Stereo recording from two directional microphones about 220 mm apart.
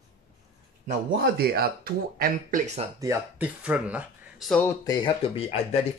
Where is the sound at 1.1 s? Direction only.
45° right (ahead or behind).